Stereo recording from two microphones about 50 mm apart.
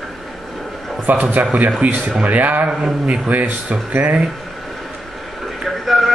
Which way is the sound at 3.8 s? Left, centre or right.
Right.